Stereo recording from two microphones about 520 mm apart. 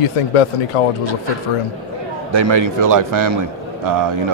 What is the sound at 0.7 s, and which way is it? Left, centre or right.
Speech, left.